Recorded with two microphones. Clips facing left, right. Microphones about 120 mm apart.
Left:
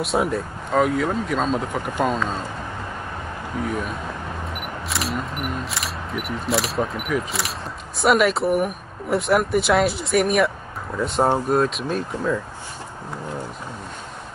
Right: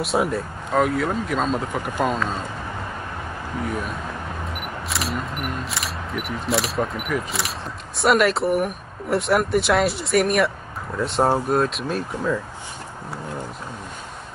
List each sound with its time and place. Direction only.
0.0 s speech: centre (ahead or behind)
3.6 s speech: centre (ahead or behind)